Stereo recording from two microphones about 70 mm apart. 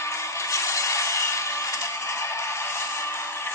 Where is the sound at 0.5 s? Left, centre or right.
Left.